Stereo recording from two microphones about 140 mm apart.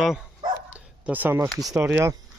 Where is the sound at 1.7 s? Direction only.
15° right (ahead or behind).